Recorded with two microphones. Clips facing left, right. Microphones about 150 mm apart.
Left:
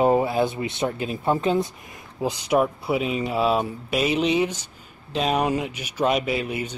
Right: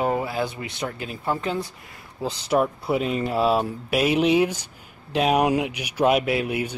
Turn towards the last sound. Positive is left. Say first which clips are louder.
# right 2 dB
turn(degrees=-5)  # may be behind; listen again after turning